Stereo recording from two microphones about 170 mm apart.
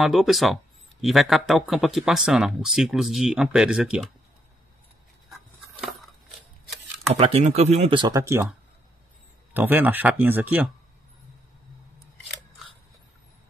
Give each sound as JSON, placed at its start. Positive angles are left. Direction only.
{"t": 0.0, "sound": "speech", "side_deg": 0}
{"t": 5.3, "sound": "a sound", "side_deg": 0}
{"t": 7.2, "sound": "speech", "side_deg": -40}
{"t": 8.2, "sound": "speech", "side_deg": -15}